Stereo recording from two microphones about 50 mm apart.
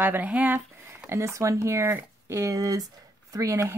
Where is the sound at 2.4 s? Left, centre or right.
Right.